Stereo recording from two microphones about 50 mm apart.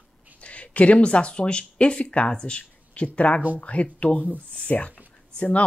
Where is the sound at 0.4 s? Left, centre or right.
Left.